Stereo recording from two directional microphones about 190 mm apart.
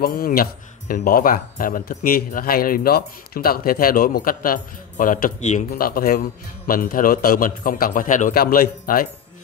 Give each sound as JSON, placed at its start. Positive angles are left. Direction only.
{"t": 0.0, "sound": "speech", "side_deg": 50}
{"t": 5.7, "sound": "speech", "side_deg": 50}